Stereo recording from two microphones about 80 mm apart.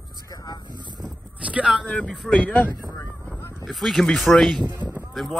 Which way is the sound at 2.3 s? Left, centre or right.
Centre.